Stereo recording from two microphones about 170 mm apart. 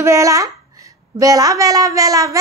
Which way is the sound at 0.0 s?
20° right (ahead or behind).